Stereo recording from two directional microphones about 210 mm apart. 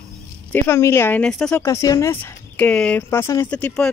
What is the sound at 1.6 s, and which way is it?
Speech, 15° left (ahead or behind).